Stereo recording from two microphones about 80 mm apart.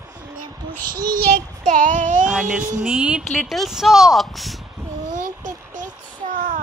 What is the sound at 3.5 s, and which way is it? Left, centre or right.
A woman's voice, centre.